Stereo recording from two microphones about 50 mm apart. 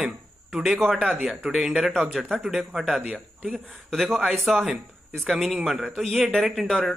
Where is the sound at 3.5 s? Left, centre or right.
Centre.